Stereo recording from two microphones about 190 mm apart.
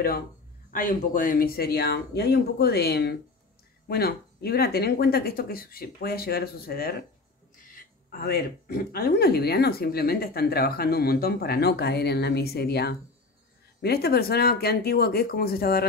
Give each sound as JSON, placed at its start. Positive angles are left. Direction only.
{"t": 0.7, "sound": "a woman's voice", "side_deg": 45}